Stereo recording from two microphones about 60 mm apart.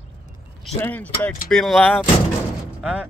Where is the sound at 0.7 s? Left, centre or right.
Left.